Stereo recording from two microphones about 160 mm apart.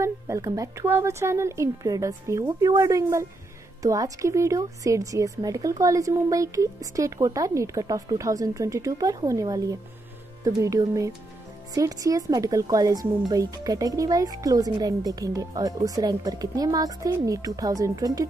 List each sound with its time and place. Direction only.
0.0 s speech: 20° right (ahead or behind)